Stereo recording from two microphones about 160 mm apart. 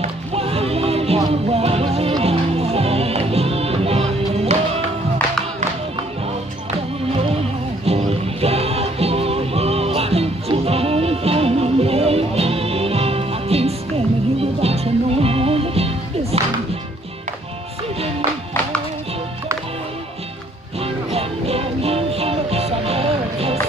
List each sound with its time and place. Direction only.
0.0 s music: 40° right (ahead or behind)
7.8 s music: 40° right (ahead or behind)
20.8 s music: 40° right (ahead or behind)